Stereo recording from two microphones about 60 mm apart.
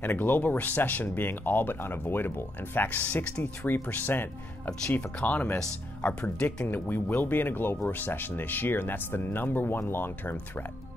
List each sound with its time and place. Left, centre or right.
0.0 s speech: left
6.6 s speech: left